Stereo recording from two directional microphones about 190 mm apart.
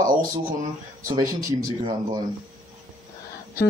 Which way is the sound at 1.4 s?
45° right (ahead or behind).